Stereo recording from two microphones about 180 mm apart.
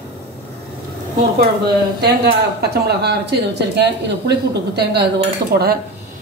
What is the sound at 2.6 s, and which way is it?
A woman's voice, 65° right (ahead or behind).